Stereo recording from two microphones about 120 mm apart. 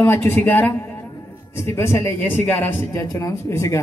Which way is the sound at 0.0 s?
20° left (ahead or behind).